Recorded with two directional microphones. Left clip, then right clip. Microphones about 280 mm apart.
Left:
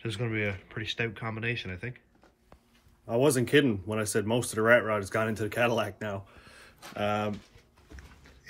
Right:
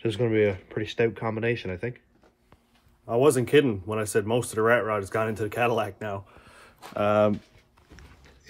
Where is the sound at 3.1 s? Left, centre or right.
Centre.